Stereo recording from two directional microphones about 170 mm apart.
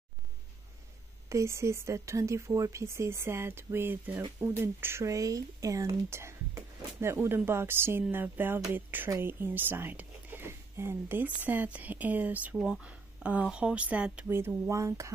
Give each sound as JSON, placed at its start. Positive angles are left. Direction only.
{"t": 1.3, "sound": "speech", "side_deg": -15}